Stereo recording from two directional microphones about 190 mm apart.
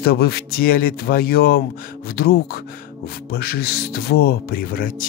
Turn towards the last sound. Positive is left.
turn(degrees=50)  # may be behind; listen again after turning